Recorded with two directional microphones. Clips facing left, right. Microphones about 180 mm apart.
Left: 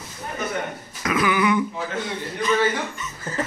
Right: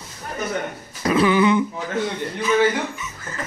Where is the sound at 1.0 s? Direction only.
30° right (ahead or behind).